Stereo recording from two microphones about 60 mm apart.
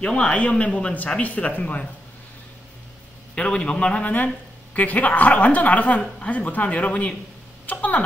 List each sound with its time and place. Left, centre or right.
0.0 s a man's voice: centre
3.3 s a man's voice: centre
4.0 s a woman's voice: left